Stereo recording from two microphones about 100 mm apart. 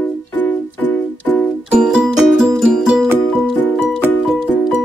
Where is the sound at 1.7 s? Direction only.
10° right (ahead or behind).